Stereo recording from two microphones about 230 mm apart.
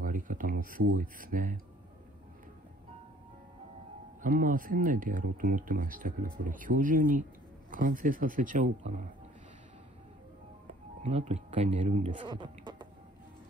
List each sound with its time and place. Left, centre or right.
0.0 s a sound: right
0.9 s speech: right
4.2 s speech: right
11.0 s speech: right
12.2 s speech: right